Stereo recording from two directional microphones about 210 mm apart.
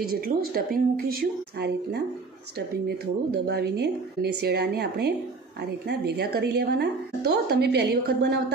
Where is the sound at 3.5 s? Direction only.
55° right (ahead or behind).